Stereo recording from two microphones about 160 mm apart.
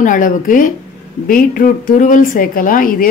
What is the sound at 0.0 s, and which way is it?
A woman's voice, 55° left (ahead or behind).